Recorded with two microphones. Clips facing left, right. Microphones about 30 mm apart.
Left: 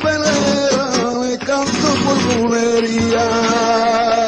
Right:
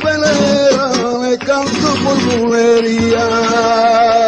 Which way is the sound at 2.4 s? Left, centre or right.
Centre.